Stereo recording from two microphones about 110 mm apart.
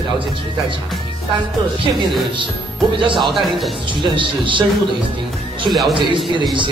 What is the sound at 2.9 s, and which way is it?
Speech, 50° right (ahead or behind).